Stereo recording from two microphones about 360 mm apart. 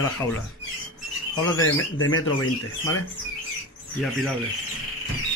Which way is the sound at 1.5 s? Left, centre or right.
Left.